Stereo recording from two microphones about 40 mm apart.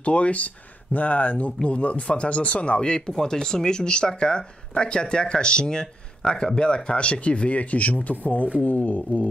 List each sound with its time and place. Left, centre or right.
0.0 s speech: left
3.1 s speech: centre; by 9.3 s left